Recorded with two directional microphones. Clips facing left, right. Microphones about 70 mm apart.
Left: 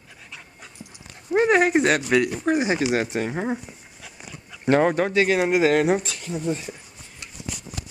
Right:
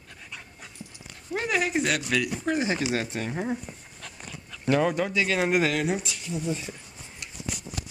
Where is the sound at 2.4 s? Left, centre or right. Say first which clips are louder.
Left 5 dB; centre.